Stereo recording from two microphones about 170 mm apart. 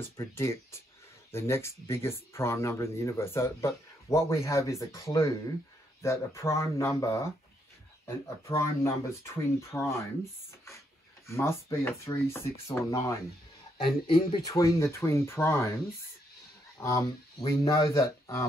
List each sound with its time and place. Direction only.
0.0 s speech: 15° left (ahead or behind)
11.2 s speech: 15° left (ahead or behind)
13.7 s speech: 30° left (ahead or behind); by 15.7 s 15° left (ahead or behind)
16.7 s speech: 20° left (ahead or behind)